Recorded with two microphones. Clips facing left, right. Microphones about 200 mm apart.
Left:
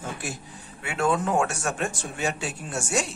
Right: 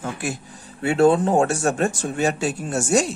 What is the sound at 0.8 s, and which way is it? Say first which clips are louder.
Speech: right 9 dB; 35° right (ahead or behind).